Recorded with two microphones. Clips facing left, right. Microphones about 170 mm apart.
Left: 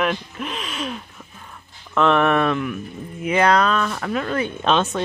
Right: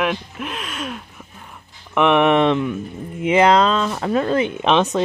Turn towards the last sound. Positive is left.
turn(degrees=-15)  # may be behind; listen again after turning